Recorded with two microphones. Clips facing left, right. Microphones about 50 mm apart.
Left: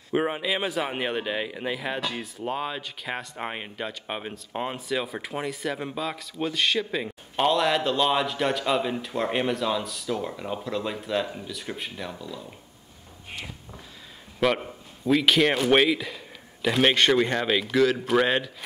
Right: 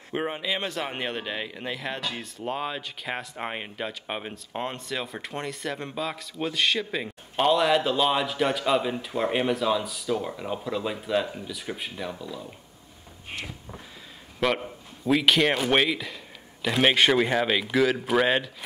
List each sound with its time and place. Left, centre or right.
0.1 s speech: centre
13.3 s a sound: centre
14.4 s speech: centre